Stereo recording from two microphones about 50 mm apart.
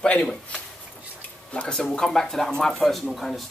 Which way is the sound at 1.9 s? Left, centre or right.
Centre.